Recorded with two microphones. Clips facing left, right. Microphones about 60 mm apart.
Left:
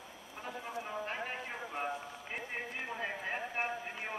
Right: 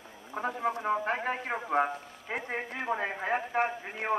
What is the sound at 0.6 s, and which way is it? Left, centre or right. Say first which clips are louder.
A man's voice: right 10 dB; right.